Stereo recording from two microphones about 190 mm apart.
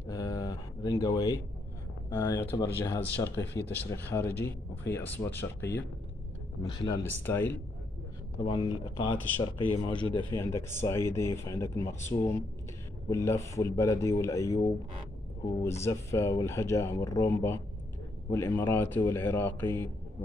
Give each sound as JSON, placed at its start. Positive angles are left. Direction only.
{"t": 0.0, "sound": "a sound", "side_deg": 20}
{"t": 2.0, "sound": "speech", "side_deg": 15}
{"t": 4.3, "sound": "speech", "side_deg": 60}
{"t": 4.9, "sound": "speech", "side_deg": 10}
{"t": 8.4, "sound": "speech", "side_deg": 25}
{"t": 10.3, "sound": "speech", "side_deg": 15}
{"t": 15.8, "sound": "speech", "side_deg": 15}